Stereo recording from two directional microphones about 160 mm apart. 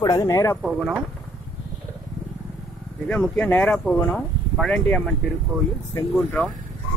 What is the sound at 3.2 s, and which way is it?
Speech, 10° left (ahead or behind).